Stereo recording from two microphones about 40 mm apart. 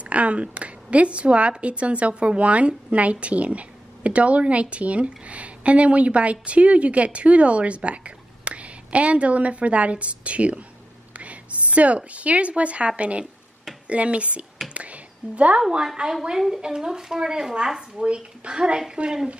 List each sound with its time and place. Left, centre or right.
0.1 s a woman's voice: right
14.7 s a sound: right
15.8 s a woman's voice: centre
17.9 s a woman's voice: right